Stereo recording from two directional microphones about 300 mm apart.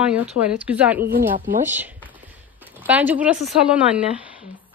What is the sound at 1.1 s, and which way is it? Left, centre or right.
Speech, right.